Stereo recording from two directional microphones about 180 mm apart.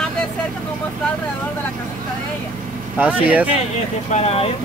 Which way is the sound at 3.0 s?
10° right (ahead or behind).